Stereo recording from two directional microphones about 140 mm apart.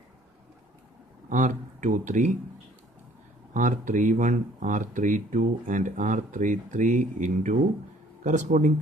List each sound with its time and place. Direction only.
1.3 s speech: 65° right (ahead or behind)
3.5 s speech: 65° right (ahead or behind)